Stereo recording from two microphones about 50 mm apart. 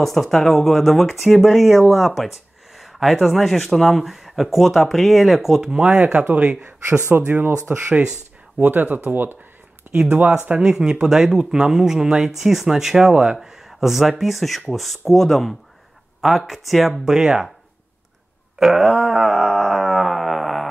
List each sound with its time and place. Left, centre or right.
0.0 s speech: centre
6.3 s speech: right
6.6 s speech: right
9.9 s a sound: right
10.6 s speech: centre
18.6 s speech: centre
19.1 s a sound: centre